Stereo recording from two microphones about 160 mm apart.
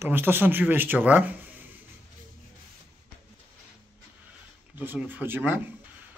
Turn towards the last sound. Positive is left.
turn(degrees=-10)  # may be behind; listen again after turning